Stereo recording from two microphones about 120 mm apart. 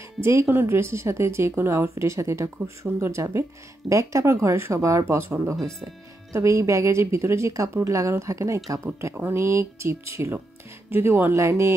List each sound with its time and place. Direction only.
0.2 s speech: 20° right (ahead or behind)